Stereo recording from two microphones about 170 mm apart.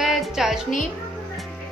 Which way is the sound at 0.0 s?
Centre (ahead or behind).